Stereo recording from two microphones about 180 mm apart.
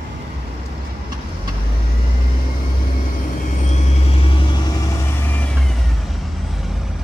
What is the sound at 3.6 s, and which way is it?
Vehicle, 40° left (ahead or behind).